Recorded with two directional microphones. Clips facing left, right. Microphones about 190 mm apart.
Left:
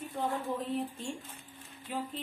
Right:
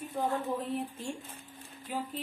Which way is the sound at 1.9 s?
Centre (ahead or behind).